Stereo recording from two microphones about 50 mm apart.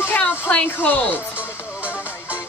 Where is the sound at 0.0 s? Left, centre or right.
Left.